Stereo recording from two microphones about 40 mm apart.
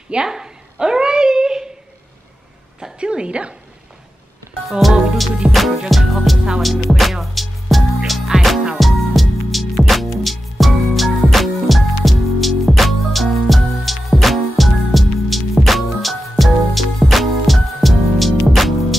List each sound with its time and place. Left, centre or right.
0.1 s a sound: centre
3.0 s a woman's voice: right
4.6 s music: centre